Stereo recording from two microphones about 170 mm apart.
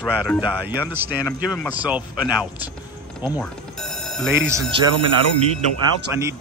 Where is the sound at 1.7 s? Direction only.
10° right (ahead or behind).